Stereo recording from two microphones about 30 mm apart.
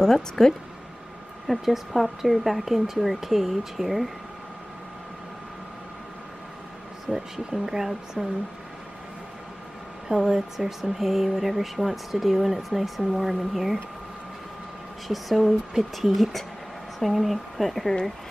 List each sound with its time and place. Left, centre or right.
0.0 s speech: centre
1.5 s speech: centre
7.1 s speech: centre
10.0 s speech: right
10.8 s speech: centre
15.0 s speech: centre